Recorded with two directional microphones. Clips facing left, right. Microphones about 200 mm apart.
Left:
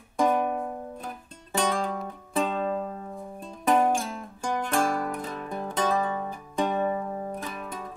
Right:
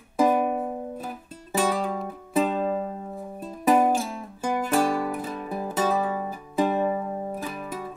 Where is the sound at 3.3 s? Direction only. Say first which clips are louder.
Right 3 dB; 5° right (ahead or behind).